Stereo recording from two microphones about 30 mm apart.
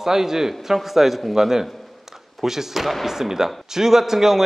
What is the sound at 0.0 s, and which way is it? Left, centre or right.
A man's voice, centre.